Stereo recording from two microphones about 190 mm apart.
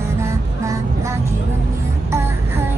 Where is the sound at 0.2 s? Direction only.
15° right (ahead or behind).